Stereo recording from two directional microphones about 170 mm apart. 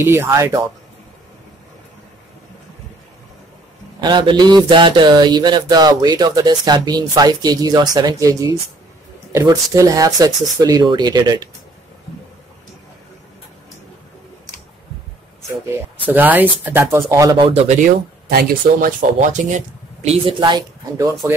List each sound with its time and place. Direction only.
0.0 s speech: 15° right (ahead or behind)
4.0 s speech: 25° right (ahead or behind)
16.1 s speech: 10° right (ahead or behind)
17.4 s speech: 35° right (ahead or behind)